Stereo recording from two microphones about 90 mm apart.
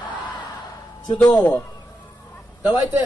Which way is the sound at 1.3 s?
50° left (ahead or behind).